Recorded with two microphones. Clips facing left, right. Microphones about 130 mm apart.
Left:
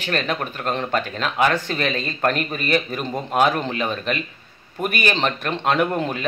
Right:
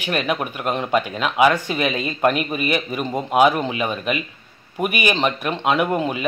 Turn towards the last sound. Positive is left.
turn(degrees=-5)  # may be behind; listen again after turning